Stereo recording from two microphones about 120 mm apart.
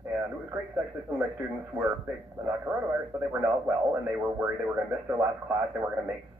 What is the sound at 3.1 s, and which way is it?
Speech, 20° right (ahead or behind).